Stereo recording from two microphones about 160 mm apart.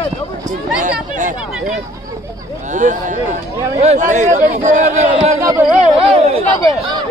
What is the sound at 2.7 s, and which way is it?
Speech, 50° right (ahead or behind).